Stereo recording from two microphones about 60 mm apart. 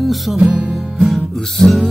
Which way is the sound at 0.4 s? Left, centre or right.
Right.